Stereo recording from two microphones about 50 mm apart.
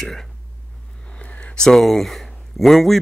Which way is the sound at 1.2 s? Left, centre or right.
Left.